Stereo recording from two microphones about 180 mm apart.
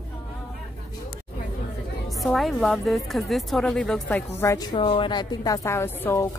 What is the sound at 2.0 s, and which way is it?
A woman's voice, centre (ahead or behind).